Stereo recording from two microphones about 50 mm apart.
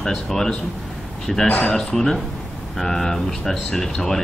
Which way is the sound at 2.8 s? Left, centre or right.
Centre.